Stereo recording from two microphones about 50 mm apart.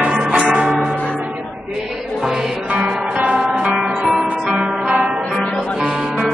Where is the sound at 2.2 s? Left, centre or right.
Centre.